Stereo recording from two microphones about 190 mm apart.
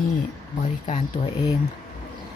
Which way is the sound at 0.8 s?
35° left (ahead or behind).